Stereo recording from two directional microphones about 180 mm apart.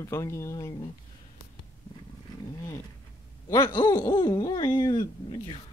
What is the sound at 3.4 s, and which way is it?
Speech, 25° left (ahead or behind).